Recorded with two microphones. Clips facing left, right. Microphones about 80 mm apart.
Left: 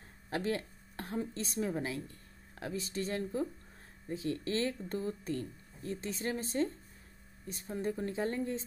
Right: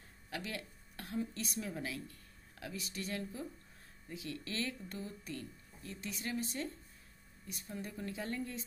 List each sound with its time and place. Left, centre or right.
0.3 s a woman's voice: left